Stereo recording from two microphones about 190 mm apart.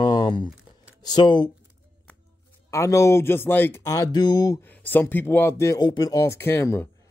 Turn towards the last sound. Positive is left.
turn(degrees=10)  # may be behind; listen again after turning